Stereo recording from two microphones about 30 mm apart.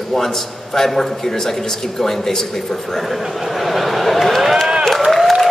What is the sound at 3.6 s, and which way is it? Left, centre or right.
Speech, centre.